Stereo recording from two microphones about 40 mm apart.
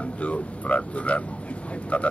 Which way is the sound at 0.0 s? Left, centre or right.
Left.